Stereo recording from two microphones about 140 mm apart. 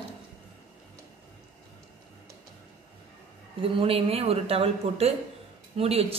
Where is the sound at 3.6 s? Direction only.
40° right (ahead or behind).